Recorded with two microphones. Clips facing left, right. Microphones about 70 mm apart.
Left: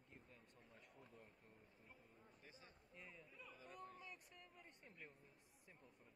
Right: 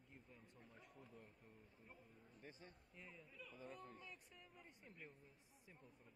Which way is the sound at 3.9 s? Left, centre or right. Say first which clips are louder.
Even; centre.